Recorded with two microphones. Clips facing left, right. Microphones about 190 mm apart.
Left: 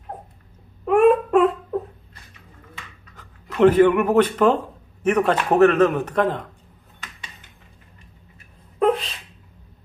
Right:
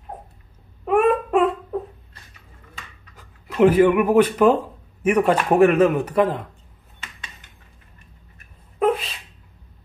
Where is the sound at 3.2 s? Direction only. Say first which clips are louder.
Even; 10° right (ahead or behind).